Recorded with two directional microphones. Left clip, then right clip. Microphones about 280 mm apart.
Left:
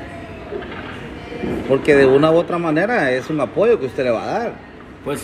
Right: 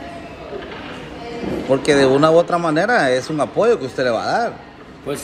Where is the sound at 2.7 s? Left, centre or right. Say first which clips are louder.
Left 1 dB; right.